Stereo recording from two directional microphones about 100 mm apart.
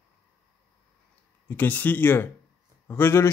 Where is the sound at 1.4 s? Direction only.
20° left (ahead or behind).